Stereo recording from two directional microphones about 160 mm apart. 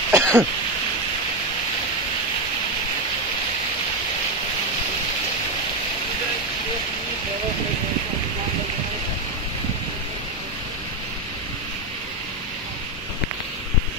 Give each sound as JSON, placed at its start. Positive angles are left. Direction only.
{"t": 0.1, "sound": "throat clearing", "side_deg": -15}